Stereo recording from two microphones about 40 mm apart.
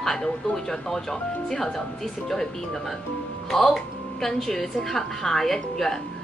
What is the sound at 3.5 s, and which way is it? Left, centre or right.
A woman's voice, centre.